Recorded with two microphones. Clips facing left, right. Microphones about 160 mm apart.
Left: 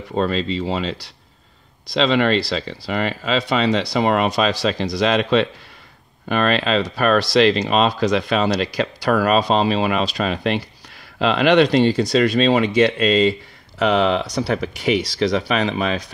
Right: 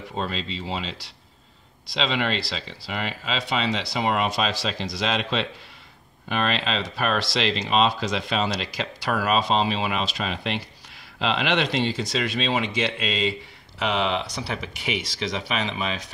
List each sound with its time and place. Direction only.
0.1 s speech: 50° left (ahead or behind)